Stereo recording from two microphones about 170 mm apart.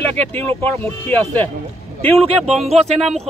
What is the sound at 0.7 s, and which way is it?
Speech, 10° left (ahead or behind).